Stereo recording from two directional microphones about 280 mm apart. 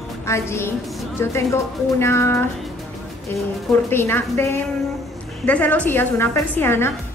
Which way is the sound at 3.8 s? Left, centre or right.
Centre.